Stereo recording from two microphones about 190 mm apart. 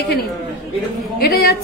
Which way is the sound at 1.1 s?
55° left (ahead or behind).